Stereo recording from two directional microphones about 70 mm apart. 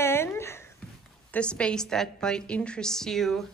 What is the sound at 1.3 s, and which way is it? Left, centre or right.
A woman's voice, centre.